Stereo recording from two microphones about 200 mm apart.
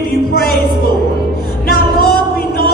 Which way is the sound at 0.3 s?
50° left (ahead or behind).